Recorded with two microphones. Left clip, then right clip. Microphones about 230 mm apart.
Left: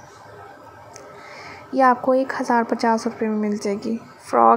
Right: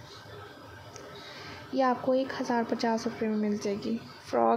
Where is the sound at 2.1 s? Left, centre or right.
Centre.